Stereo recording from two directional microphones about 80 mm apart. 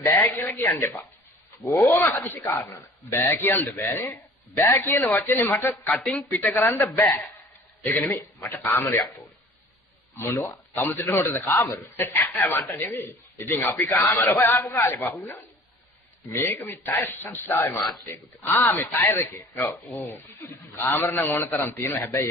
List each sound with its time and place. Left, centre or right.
0.0 s a man's voice: left
2.0 s a man's voice: left
10.1 s a man's voice: left
16.3 s a man's voice: left